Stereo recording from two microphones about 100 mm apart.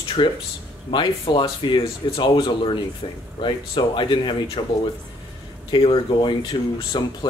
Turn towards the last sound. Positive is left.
turn(degrees=50)  # may be behind; listen again after turning